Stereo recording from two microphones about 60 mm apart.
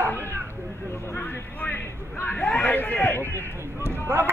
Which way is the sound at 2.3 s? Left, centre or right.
Centre.